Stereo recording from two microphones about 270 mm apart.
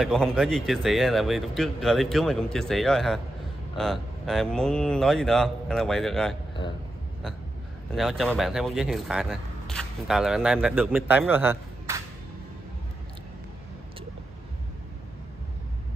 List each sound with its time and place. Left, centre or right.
0.0 s speech: centre
7.9 s speech: centre